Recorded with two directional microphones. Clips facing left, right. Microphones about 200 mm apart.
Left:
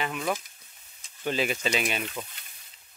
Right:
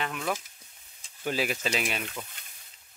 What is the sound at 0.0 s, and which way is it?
Speech, 5° left (ahead or behind).